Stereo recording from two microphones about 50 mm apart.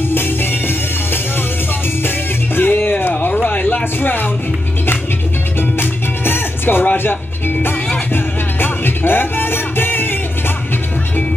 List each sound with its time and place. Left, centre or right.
0.1 s music: left
2.0 s music: left
5.6 s music: left